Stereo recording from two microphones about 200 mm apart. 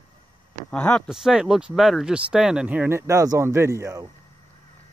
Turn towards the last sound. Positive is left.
turn(degrees=-15)  # may be behind; listen again after turning